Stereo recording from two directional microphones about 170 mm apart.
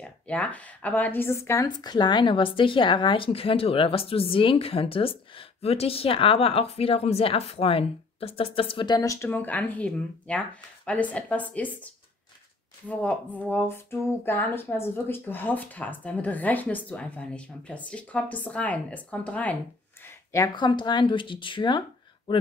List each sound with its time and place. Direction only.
0.0 s speech: 5° left (ahead or behind)
20.1 s speech: 20° left (ahead or behind)